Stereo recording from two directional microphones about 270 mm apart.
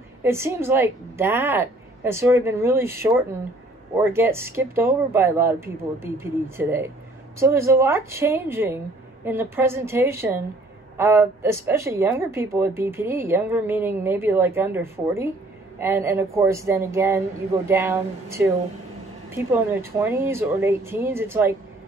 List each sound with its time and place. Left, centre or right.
0.2 s speech: centre